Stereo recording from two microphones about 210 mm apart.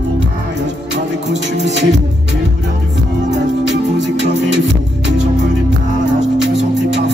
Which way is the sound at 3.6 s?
60° right (ahead or behind).